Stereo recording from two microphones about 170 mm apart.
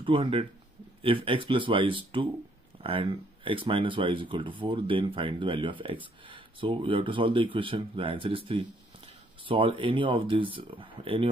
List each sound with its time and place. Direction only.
0.0 s speech: 30° right (ahead or behind)